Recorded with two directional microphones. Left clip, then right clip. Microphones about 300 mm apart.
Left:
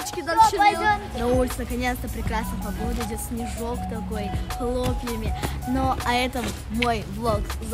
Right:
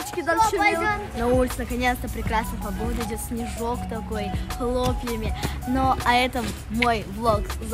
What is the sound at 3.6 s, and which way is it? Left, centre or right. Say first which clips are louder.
A woman's voice: right 5 dB; centre.